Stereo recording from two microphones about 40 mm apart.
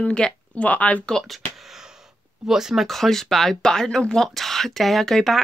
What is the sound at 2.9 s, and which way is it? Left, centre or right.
Speech, centre.